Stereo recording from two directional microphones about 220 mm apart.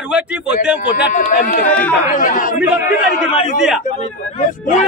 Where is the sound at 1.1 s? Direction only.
40° left (ahead or behind).